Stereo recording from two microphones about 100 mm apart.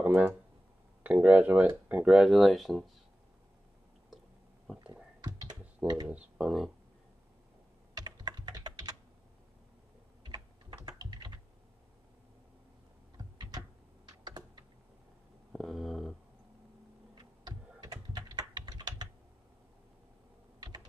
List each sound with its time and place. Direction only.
0.0 s a sound: 15° right (ahead or behind)
1.0 s speech: 15° right (ahead or behind); by 2.9 s centre (ahead or behind)
6.0 s speech: 10° right (ahead or behind)
7.9 s computer keyboard: 45° right (ahead or behind)
10.2 s typing: 45° right (ahead or behind)
14.0 s computer keyboard: 45° right (ahead or behind)
15.5 s a sound: centre (ahead or behind)
17.1 s a sound: 45° right (ahead or behind)
18.1 s typing: 45° right (ahead or behind)